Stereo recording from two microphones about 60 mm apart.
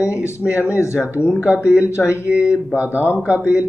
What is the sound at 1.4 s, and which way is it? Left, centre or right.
Speech, right.